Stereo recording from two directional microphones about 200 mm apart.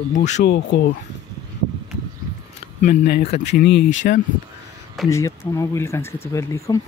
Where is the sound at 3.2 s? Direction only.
35° left (ahead or behind).